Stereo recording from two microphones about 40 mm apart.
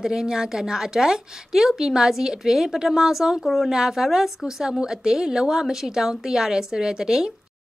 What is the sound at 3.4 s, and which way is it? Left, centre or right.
Speech, centre.